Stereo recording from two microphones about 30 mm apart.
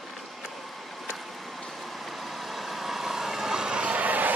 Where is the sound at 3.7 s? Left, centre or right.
Right.